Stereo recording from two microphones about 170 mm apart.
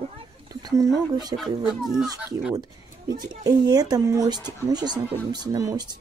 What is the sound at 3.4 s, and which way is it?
A woman's voice, 20° right (ahead or behind).